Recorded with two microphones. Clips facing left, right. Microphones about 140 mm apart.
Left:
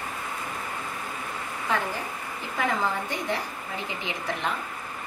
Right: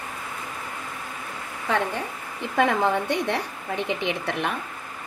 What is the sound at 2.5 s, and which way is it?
A woman's voice, 75° right (ahead or behind).